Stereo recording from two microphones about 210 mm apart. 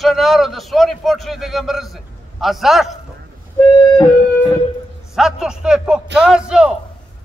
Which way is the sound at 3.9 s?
15° left (ahead or behind).